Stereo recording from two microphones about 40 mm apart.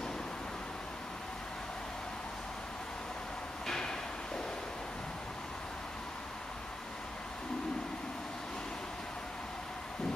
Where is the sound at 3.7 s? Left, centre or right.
Centre.